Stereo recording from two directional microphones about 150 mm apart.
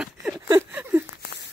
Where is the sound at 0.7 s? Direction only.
15° right (ahead or behind).